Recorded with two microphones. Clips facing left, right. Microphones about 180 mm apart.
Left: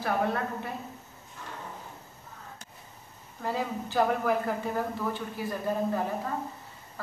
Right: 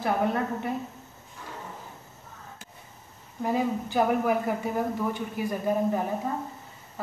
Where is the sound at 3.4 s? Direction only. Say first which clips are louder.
Right 5 dB; 15° right (ahead or behind).